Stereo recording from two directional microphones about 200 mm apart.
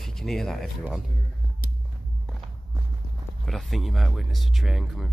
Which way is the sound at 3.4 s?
Centre (ahead or behind).